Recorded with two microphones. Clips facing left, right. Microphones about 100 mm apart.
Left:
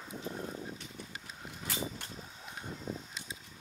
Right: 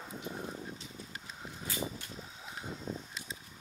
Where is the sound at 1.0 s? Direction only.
65° left (ahead or behind).